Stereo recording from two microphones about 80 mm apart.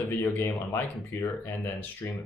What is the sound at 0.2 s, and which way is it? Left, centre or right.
Speech, left.